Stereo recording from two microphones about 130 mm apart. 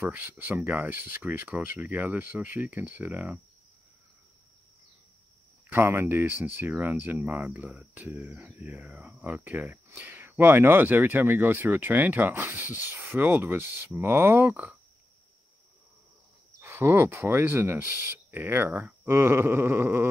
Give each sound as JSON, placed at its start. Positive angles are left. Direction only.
{"t": 0.0, "sound": "speech", "side_deg": -15}
{"t": 5.7, "sound": "speech", "side_deg": -20}
{"t": 16.5, "sound": "speech", "side_deg": -20}